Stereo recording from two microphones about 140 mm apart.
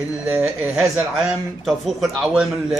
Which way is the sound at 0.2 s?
5° right (ahead or behind).